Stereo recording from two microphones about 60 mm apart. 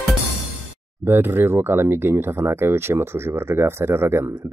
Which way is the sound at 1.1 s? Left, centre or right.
Right.